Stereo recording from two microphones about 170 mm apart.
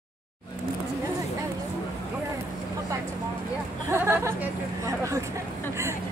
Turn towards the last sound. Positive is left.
turn(degrees=-15)  # may be behind; listen again after turning